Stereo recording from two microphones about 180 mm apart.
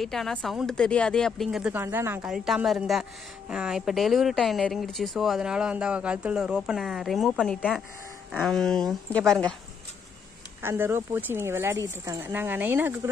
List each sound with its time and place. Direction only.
0.0 s a woman's voice: centre (ahead or behind)
10.6 s speech: 15° right (ahead or behind)